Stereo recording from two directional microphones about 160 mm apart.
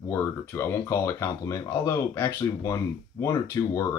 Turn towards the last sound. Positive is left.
turn(degrees=15)  # may be behind; listen again after turning